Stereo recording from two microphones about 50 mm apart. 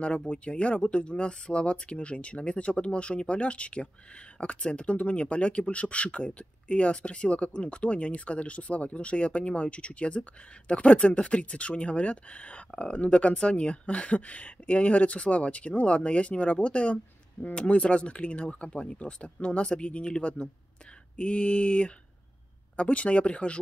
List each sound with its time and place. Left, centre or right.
0.0 s speech: left